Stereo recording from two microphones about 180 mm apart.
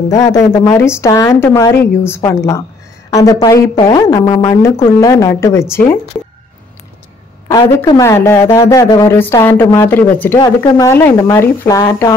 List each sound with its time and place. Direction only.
0.1 s a woman's voice: 15° left (ahead or behind)
7.6 s a woman's voice: 20° left (ahead or behind)